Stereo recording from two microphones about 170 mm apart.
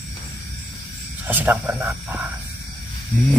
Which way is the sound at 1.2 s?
10° right (ahead or behind).